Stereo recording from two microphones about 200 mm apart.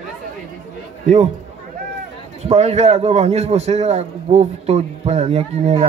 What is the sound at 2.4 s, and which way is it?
A man's voice, 35° right (ahead or behind).